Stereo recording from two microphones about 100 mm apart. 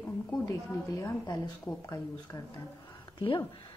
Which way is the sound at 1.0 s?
40° left (ahead or behind).